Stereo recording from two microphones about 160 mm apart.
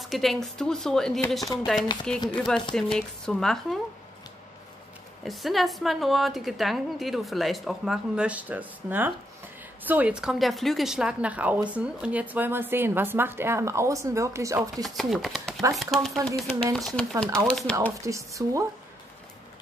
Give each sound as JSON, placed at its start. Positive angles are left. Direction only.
{"t": 0.0, "sound": "a woman's voice", "side_deg": 0}
{"t": 1.4, "sound": "speech", "side_deg": 20}
{"t": 2.0, "sound": "a woman's voice", "side_deg": 5}
{"t": 5.2, "sound": "a woman's voice", "side_deg": 0}
{"t": 14.8, "sound": "a woman's voice", "side_deg": 0}
{"t": 18.0, "sound": "speech", "side_deg": -20}